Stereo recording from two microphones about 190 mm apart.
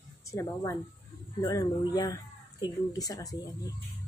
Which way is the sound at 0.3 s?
20° left (ahead or behind).